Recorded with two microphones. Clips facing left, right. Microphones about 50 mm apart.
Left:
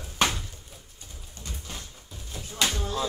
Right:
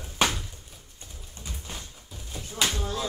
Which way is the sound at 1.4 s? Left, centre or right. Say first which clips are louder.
Even; centre.